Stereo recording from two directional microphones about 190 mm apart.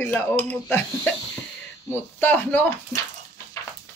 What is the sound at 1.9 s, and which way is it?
Speech, 10° left (ahead or behind).